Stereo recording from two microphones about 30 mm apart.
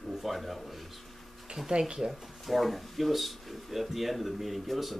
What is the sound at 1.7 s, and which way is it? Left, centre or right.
Speech, right.